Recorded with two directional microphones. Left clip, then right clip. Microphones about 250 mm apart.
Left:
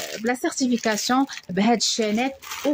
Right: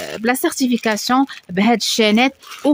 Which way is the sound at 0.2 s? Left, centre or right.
Right.